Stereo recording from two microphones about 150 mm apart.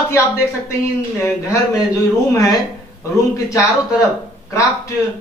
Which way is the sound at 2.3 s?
20° left (ahead or behind).